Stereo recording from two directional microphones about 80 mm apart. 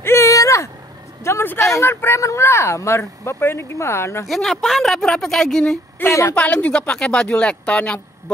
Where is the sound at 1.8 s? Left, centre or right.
Left.